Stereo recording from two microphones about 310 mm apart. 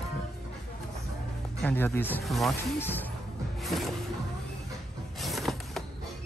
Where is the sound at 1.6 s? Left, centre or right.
Centre.